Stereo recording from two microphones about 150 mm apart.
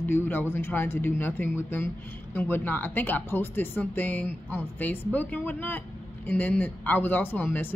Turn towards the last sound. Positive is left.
turn(degrees=10)  # may be behind; listen again after turning